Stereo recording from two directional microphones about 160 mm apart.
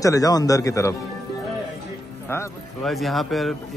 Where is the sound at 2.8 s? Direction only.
Centre (ahead or behind).